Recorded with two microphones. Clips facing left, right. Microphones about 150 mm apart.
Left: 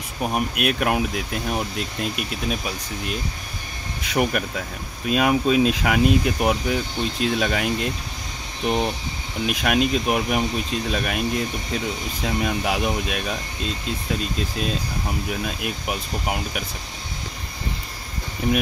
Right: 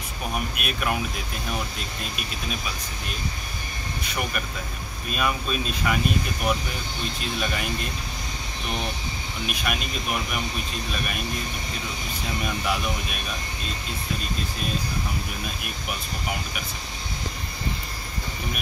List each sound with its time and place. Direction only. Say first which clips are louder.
0.3 s speech: left 7 dB; 75° left (ahead or behind)
4.0 s speech: left 9 dB; 90° left
12.4 s speech: left 2 dB; 90° left
15.2 s speech: left 6 dB; 90° left